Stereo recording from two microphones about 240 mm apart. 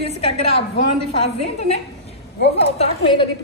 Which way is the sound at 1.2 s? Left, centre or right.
Left.